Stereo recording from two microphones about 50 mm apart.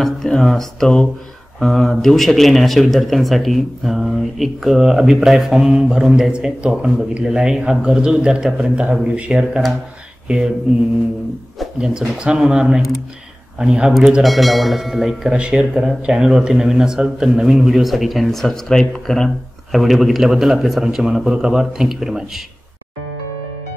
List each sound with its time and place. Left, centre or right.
0.0 s speech: centre
12.2 s speech: centre
14.2 s speech: centre
15.3 s speech: centre
19.7 s speech: centre